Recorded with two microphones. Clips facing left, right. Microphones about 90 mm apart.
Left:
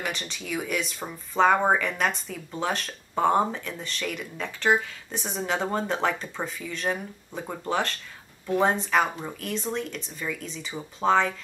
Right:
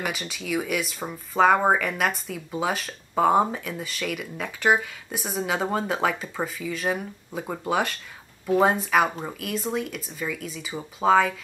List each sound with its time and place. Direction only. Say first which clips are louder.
0.0 s speech: right 2 dB; 5° right (ahead or behind)